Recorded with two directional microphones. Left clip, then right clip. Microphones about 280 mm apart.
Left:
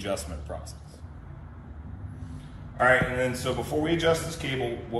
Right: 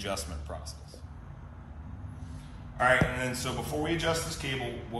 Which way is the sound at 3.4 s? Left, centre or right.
Centre.